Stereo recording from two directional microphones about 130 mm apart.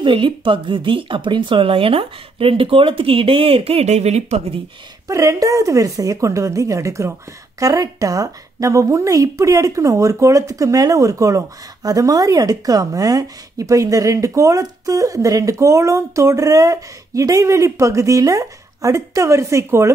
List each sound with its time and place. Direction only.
0.0 s speech: 40° right (ahead or behind); by 4.6 s 55° right (ahead or behind)
5.0 s a woman's voice: 25° right (ahead or behind)